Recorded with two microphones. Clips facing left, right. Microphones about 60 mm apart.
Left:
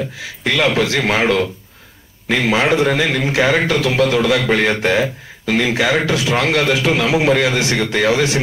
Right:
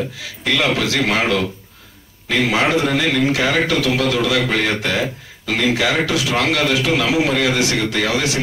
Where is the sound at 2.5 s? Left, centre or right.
Left.